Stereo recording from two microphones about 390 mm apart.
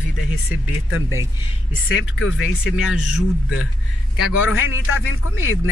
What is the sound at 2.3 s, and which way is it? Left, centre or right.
Speech, centre.